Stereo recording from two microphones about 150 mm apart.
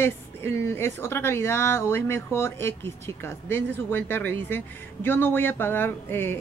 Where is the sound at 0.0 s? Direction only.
15° left (ahead or behind).